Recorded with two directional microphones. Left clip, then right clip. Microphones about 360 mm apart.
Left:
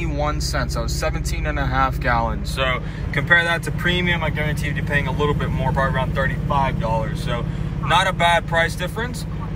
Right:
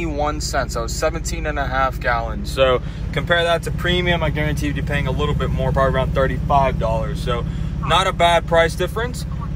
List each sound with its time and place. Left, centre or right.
0.0 s speech: centre
7.9 s speech: centre